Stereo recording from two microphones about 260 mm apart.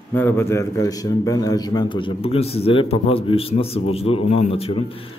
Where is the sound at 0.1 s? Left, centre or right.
Centre.